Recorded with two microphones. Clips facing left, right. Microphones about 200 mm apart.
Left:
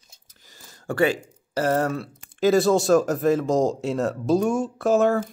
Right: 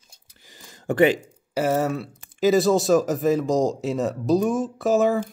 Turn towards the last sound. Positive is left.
turn(degrees=0)  # may be behind; listen again after turning